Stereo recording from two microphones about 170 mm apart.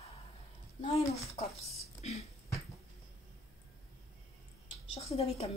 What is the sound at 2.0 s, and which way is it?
Speech, 40° left (ahead or behind).